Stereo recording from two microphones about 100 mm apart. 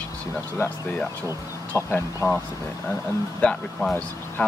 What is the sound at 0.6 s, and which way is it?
Speech, 15° left (ahead or behind).